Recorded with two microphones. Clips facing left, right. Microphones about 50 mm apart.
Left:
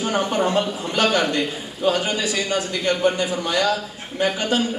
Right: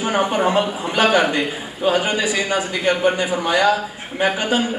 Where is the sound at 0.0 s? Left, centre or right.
Centre.